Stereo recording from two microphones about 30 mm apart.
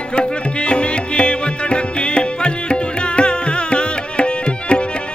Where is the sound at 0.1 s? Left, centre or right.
Left.